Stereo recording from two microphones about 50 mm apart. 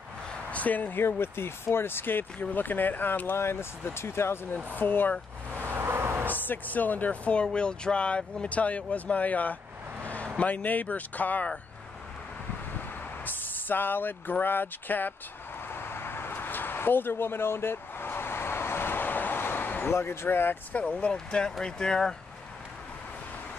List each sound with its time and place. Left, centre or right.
0.5 s speech: left
4.7 s speech: left
5.5 s vehicle: right
6.2 s speech: left
10.0 s vehicle: left
10.4 s speech: left
13.2 s speech: left
15.7 s a sound: left
19.9 s speech: left
20.8 s speech: left